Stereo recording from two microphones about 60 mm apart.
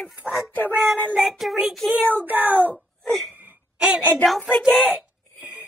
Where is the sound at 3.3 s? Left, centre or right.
Right.